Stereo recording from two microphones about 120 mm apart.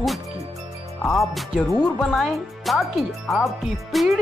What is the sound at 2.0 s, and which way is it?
Speech, centre (ahead or behind).